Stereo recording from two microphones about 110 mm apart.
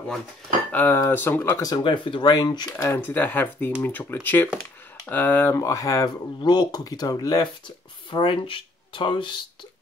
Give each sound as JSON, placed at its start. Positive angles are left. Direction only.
{"t": 0.7, "sound": "speech", "side_deg": 15}
{"t": 1.6, "sound": "speech", "side_deg": 40}
{"t": 2.8, "sound": "speech", "side_deg": 20}